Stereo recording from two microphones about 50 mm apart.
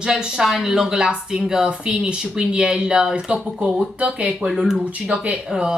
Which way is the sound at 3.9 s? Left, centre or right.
Right.